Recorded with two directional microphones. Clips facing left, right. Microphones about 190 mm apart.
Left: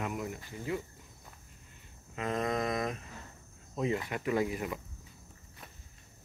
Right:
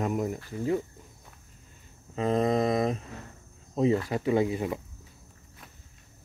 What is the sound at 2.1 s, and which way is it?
Mantra, 30° right (ahead or behind).